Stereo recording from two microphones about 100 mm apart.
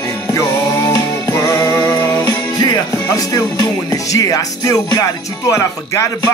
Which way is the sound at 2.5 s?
40° left (ahead or behind).